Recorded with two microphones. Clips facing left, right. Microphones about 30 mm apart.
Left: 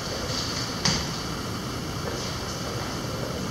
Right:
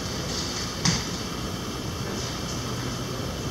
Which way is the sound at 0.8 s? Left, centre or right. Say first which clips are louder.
Even; centre.